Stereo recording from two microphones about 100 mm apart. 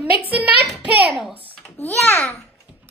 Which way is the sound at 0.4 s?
15° right (ahead or behind).